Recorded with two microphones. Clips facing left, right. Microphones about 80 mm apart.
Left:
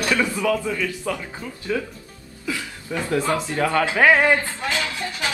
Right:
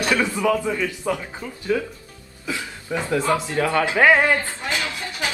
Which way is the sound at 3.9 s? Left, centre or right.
Centre.